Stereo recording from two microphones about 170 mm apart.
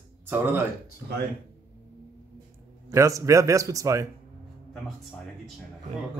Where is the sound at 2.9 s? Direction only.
20° right (ahead or behind).